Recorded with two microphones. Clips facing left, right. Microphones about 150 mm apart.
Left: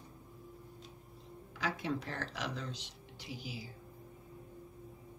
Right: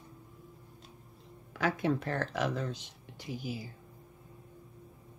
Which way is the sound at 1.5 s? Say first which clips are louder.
Right 7 dB; 55° right (ahead or behind).